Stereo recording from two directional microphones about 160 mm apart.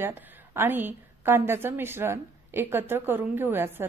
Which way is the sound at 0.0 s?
15° right (ahead or behind).